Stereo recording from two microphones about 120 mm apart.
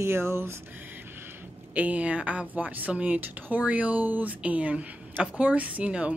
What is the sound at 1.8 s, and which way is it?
Speech, 10° right (ahead or behind).